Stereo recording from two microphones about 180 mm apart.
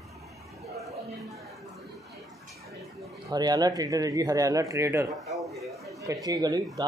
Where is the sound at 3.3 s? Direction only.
20° right (ahead or behind).